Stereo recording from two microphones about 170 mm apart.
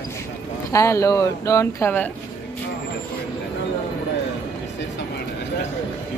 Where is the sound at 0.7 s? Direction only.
20° left (ahead or behind).